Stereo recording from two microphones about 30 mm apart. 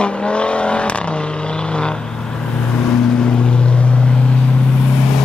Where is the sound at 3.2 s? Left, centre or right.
Left.